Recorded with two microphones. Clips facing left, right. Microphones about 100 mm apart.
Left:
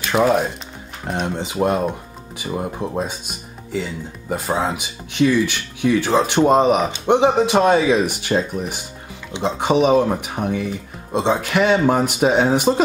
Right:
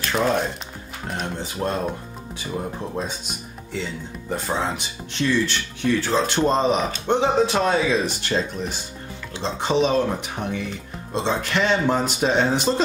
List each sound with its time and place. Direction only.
0.1 s speech: 5° left (ahead or behind)
1.2 s speech: 20° left (ahead or behind)